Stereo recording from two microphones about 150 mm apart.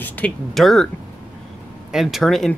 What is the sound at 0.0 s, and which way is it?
Speech, 5° left (ahead or behind).